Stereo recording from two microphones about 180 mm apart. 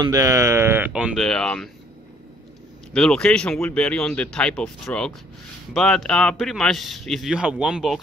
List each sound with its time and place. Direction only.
0.0 s speech: 15° right (ahead or behind); by 1.7 s 5° left (ahead or behind)
2.9 s a man's voice: 5° left (ahead or behind)